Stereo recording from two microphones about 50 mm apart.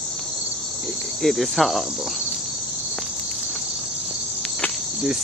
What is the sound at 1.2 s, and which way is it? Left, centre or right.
Cricket, centre.